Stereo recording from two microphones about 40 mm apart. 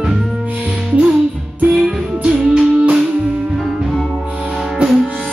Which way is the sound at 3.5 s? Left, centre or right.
Centre.